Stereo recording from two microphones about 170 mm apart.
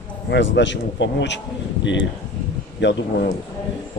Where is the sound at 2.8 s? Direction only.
90° left.